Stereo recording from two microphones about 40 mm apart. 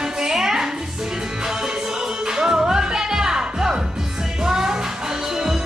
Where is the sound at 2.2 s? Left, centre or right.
Centre.